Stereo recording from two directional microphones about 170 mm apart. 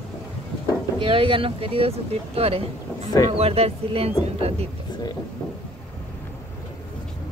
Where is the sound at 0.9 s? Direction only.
30° right (ahead or behind).